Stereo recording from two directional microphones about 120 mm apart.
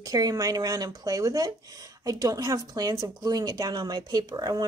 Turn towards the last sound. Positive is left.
turn(degrees=-35)  # may be behind; listen again after turning